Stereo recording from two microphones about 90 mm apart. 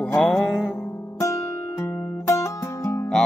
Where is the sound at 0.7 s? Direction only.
30° left (ahead or behind).